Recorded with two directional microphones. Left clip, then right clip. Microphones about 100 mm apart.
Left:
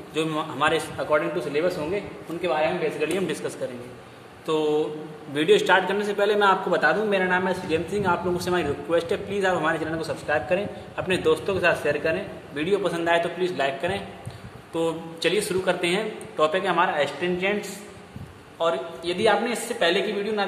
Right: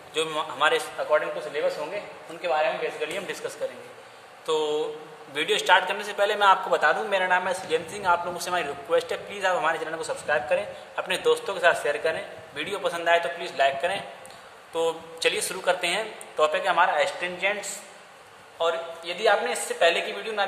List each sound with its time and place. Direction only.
0.1 s a man's voice: 25° right (ahead or behind)
0.9 s a man's voice: centre (ahead or behind)
4.5 s a man's voice: 25° right (ahead or behind)
18.6 s a man's voice: centre (ahead or behind)
19.8 s a woman's voice: 40° right (ahead or behind)